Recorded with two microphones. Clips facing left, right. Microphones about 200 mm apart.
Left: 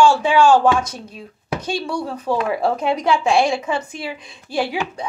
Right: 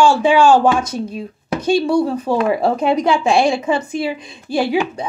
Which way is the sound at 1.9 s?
25° right (ahead or behind).